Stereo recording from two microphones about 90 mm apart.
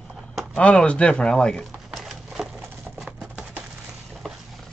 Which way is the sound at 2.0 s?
5° right (ahead or behind).